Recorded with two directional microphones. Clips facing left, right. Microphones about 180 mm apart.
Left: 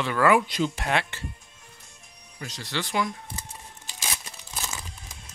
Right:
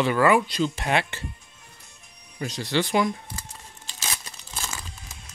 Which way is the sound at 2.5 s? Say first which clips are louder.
Right 6 dB; 15° right (ahead or behind).